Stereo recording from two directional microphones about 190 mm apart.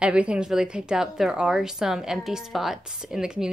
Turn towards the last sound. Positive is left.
turn(degrees=-5)  # may be behind; listen again after turning